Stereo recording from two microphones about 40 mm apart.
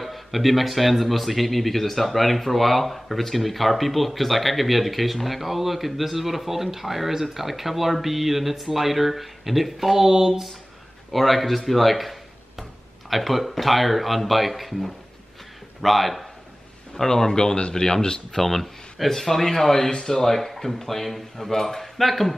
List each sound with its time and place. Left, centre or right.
0.0 s speech: centre
11.1 s speech: centre
16.9 s a man's voice: centre
18.4 s a man's voice: centre